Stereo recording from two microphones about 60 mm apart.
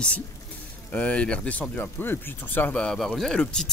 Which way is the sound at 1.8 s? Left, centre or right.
Left.